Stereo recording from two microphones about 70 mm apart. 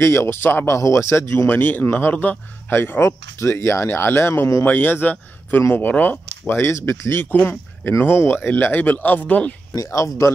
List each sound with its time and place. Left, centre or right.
0.0 s speech: left
0.7 s speech: left
1.5 s a man's voice: left
9.8 s speech: left